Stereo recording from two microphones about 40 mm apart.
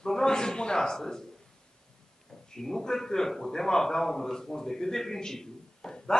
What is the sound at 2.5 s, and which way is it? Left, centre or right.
A man's voice, centre.